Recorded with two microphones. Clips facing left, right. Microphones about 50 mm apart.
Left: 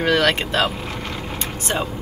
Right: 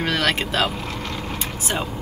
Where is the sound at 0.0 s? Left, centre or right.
Centre.